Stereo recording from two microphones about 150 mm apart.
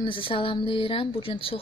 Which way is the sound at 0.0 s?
35° left (ahead or behind).